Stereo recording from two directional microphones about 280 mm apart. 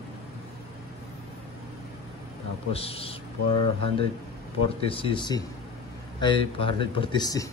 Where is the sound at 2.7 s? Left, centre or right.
Left.